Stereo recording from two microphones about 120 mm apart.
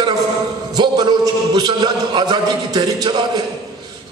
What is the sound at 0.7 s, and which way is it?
A man's voice, 35° right (ahead or behind).